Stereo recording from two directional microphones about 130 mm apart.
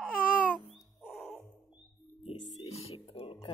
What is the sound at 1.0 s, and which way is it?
Music, centre (ahead or behind).